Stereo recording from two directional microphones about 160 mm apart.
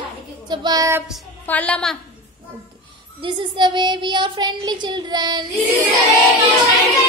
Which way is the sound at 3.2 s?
30° right (ahead or behind).